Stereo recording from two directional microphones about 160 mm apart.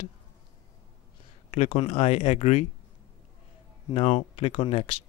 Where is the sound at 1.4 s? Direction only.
40° left (ahead or behind).